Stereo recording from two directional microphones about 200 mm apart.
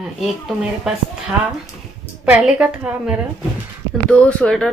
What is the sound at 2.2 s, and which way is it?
Speech, 5° right (ahead or behind).